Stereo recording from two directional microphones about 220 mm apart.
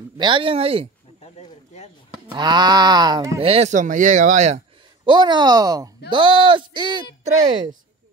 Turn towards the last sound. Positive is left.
turn(degrees=-20)  # may be behind; listen again after turning